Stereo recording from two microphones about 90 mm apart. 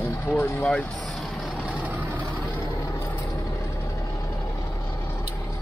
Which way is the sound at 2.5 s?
35° left (ahead or behind).